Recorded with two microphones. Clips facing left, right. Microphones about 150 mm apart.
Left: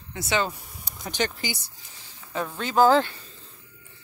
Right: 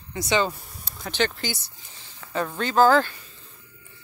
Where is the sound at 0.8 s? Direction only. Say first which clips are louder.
Right 2 dB; 15° left (ahead or behind).